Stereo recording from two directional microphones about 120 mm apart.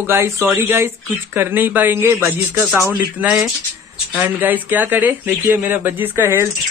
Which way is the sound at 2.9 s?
10° right (ahead or behind).